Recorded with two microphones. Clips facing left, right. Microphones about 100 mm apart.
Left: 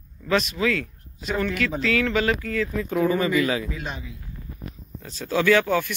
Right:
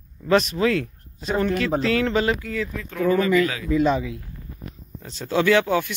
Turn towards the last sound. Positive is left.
turn(degrees=-20)  # may be behind; listen again after turning